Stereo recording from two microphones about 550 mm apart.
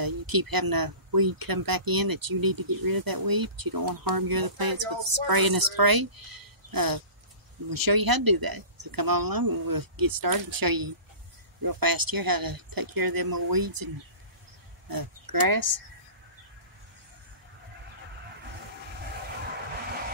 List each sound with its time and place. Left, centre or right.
0.0 s speech: right
14.9 s speech: right